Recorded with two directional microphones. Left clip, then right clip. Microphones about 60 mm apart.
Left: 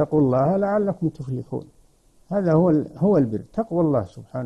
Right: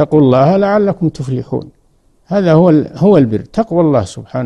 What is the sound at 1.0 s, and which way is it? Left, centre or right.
Speech, left.